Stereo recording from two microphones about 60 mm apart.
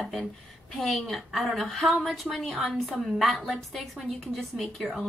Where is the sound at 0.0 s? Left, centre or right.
Centre.